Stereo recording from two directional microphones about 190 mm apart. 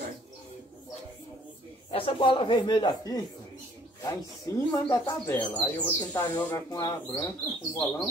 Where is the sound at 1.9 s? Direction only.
30° left (ahead or behind).